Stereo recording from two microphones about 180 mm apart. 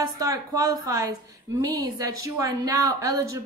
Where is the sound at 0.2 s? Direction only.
20° right (ahead or behind).